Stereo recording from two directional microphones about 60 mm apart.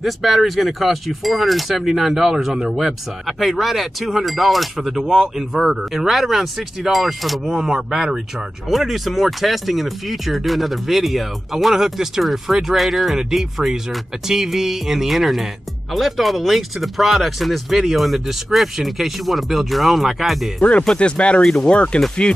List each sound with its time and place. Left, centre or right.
0.0 s speech: centre
20.8 s speech: centre